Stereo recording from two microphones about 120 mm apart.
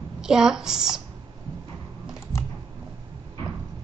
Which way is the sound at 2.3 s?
25° left (ahead or behind).